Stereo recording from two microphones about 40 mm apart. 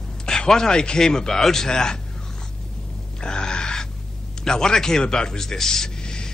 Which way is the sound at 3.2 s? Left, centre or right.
Left.